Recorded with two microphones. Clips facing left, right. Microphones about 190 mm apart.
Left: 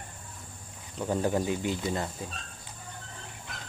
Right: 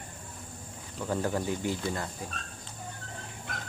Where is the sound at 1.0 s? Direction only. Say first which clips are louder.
Left 3 dB; 20° left (ahead or behind).